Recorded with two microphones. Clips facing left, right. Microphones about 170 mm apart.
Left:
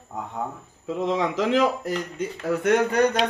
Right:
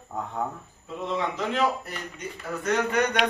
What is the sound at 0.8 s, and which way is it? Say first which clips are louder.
Speech: left 5 dB; 90° left.